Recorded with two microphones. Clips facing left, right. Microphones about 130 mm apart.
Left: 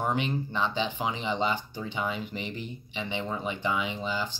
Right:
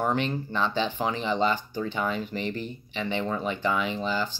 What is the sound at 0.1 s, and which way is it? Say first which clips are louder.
Speech: right 2 dB; 15° left (ahead or behind).